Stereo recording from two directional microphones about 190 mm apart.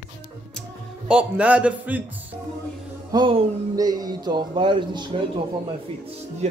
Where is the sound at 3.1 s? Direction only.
20° right (ahead or behind).